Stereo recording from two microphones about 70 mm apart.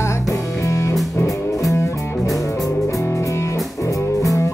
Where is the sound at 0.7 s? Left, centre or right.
Left.